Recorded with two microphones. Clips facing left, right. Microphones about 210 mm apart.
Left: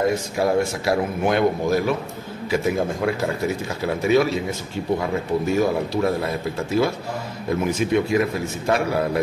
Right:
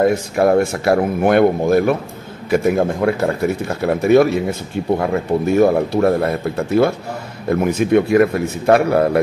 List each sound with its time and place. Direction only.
0.0 s a man's voice: 60° right (ahead or behind)